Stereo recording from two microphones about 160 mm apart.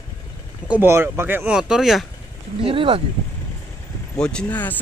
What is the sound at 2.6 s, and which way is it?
Speech, 35° right (ahead or behind).